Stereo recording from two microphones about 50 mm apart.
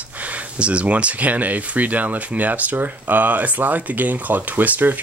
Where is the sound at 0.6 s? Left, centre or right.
Right.